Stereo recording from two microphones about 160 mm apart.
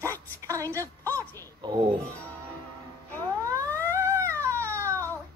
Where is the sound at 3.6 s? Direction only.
10° left (ahead or behind).